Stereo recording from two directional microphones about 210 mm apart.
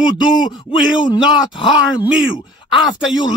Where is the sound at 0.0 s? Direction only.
20° left (ahead or behind).